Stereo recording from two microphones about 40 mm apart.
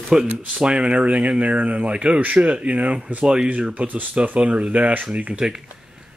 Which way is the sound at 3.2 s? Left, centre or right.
Right.